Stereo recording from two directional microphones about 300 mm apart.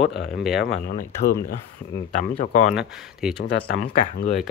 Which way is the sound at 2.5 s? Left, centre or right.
Left.